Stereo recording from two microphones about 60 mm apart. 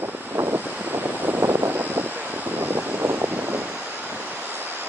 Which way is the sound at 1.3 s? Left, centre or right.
Right.